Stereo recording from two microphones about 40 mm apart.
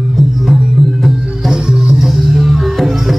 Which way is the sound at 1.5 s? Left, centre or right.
Centre.